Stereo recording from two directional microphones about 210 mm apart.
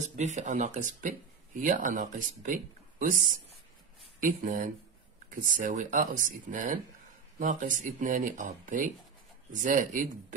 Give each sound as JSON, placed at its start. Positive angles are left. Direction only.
{"t": 0.0, "sound": "speech", "side_deg": -35}